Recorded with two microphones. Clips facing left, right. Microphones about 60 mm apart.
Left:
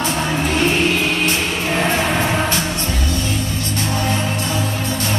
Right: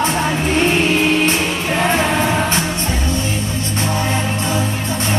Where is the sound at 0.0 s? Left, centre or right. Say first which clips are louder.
Right 2 dB; right.